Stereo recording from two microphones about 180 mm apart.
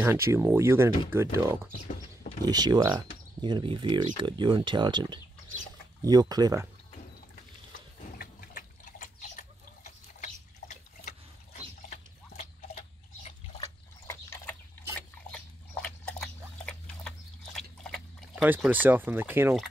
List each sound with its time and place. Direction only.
0.0 s speech: 15° right (ahead or behind)
8.2 s water: 50° left (ahead or behind)
10.2 s a sound: 40° left (ahead or behind)
11.9 s water: 35° left (ahead or behind)
13.6 s a sound: 15° left (ahead or behind)
18.3 s speech: 10° right (ahead or behind)